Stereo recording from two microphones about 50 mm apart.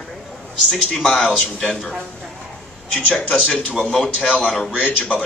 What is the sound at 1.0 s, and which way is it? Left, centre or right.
Speech, centre.